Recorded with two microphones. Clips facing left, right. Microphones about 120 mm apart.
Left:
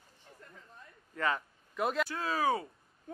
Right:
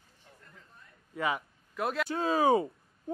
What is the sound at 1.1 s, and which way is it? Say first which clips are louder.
Speech: right 1 dB; 10° right (ahead or behind).